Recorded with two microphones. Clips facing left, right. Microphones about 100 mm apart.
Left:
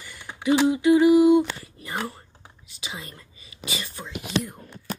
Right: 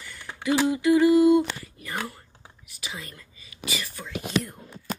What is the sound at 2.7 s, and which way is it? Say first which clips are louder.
Speech: left 1 dB; 20° left (ahead or behind).